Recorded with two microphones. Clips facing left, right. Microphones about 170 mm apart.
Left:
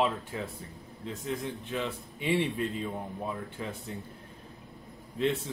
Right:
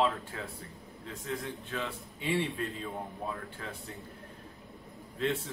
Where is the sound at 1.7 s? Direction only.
20° left (ahead or behind).